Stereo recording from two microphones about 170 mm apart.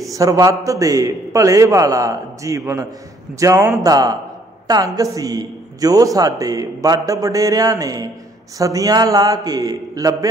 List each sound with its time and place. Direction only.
0.1 s speech: 20° right (ahead or behind)